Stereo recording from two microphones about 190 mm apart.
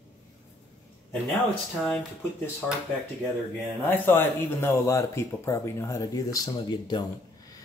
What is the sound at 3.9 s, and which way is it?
Speech, 10° left (ahead or behind).